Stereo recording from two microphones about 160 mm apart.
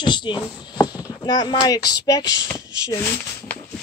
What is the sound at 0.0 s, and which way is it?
Speech, 30° left (ahead or behind).